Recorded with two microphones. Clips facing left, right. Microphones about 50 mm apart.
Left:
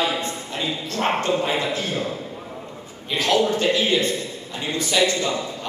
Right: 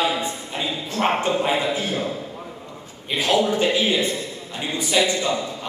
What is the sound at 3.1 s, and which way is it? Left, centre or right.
A man's voice, centre.